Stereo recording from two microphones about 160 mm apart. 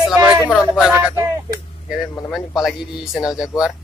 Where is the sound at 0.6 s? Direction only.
5° right (ahead or behind).